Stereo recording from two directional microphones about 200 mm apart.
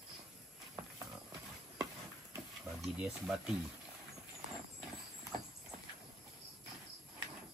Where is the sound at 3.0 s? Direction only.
5° right (ahead or behind).